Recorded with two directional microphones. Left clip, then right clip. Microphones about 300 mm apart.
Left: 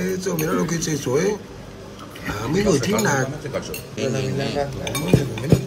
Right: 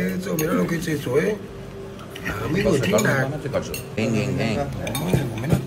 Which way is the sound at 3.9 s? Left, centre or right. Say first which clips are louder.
Even; centre.